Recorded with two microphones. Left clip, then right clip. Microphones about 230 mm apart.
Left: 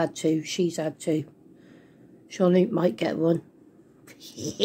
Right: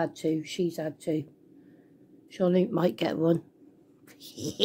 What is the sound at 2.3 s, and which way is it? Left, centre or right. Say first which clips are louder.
Speech: left 4 dB; centre.